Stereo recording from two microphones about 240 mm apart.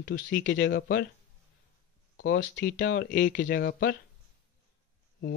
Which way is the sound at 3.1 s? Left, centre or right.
Left.